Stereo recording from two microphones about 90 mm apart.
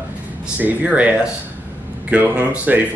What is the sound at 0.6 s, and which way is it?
Speech, 15° right (ahead or behind).